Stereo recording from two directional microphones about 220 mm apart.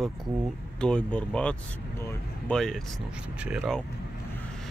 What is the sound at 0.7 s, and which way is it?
Speech, 5° left (ahead or behind).